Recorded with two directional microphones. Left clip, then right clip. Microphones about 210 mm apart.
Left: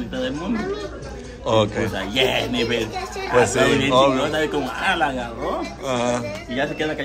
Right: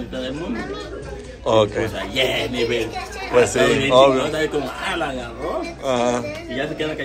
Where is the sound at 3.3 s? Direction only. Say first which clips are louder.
Right 1 dB; 15° left (ahead or behind).